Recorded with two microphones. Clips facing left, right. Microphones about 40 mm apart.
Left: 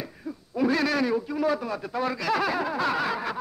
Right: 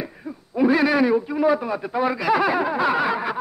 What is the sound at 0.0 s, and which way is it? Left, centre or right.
Speech, centre.